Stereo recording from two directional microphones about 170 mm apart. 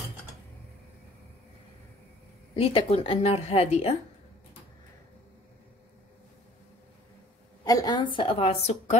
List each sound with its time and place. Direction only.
2.5 s a woman's voice: 35° left (ahead or behind)
7.6 s a woman's voice: 20° left (ahead or behind); by 8.7 s 40° left (ahead or behind)